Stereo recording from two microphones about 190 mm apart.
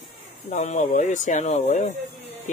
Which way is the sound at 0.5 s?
40° left (ahead or behind).